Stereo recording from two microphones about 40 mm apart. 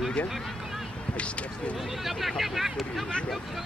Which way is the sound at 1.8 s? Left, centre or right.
Centre.